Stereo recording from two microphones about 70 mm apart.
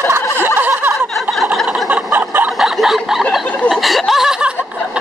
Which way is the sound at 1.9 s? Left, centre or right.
Right.